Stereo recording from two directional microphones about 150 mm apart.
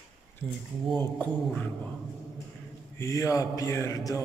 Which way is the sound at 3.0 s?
20° left (ahead or behind).